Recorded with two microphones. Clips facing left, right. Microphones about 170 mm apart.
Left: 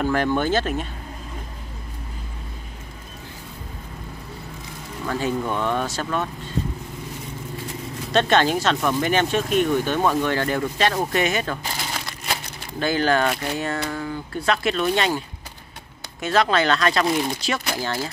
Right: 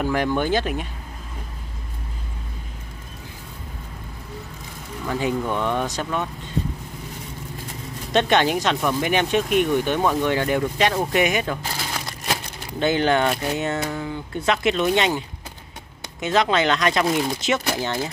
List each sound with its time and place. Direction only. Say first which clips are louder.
0.0 s speech: left 1 dB; 10° right (ahead or behind)
5.0 s speech: right 1 dB; 15° right (ahead or behind)
8.1 s speech: even; 15° right (ahead or behind)
12.7 s speech: right 1 dB; 20° right (ahead or behind)